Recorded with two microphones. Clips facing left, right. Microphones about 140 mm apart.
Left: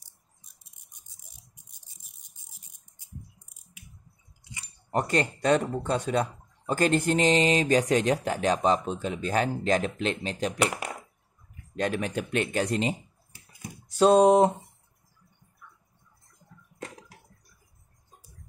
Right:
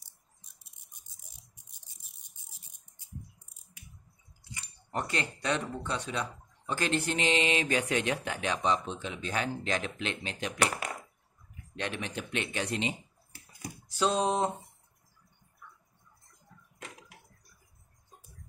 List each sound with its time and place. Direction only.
4.9 s speech: 45° left (ahead or behind)
11.7 s speech: 45° left (ahead or behind)
13.9 s a sound: 55° left (ahead or behind)